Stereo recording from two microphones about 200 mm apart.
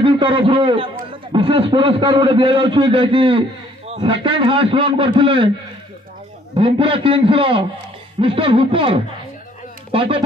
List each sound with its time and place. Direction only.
0.0 s a man's voice: 25° right (ahead or behind)
6.5 s a man's voice: 25° right (ahead or behind)